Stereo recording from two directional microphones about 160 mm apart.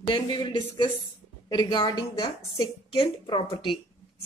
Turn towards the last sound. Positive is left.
turn(degrees=30)  # may be behind; listen again after turning